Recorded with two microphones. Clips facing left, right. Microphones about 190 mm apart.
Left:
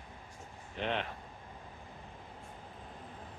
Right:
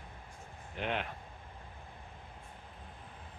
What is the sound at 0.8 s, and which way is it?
Speech, 5° right (ahead or behind).